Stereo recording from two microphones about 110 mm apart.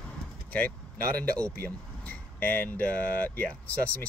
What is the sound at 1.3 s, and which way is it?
Speech, 15° left (ahead or behind).